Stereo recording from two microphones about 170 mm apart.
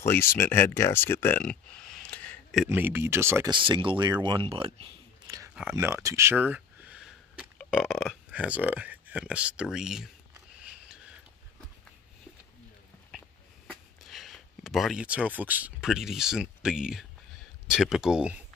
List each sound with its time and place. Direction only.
0.0 s speech: 15° left (ahead or behind)
2.7 s speech: 15° right (ahead or behind)
3.5 s speech: 30° right (ahead or behind)
5.5 s speech: 5° right (ahead or behind)
5.9 s speech: 15° right (ahead or behind)
10.6 s a sound: 5° right (ahead or behind)
13.7 s speech: centre (ahead or behind)